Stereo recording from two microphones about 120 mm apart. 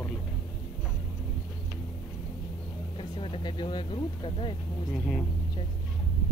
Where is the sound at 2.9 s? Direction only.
45° left (ahead or behind).